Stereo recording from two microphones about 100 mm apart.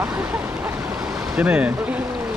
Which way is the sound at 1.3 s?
15° right (ahead or behind).